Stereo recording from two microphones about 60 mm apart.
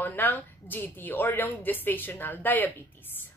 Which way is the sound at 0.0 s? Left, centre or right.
Left.